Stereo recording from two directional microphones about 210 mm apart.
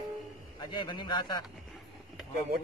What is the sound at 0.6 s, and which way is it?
Speech, 20° left (ahead or behind).